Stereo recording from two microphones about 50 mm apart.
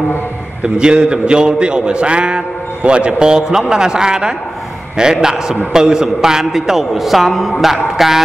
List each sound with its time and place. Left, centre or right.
0.7 s a man's voice: centre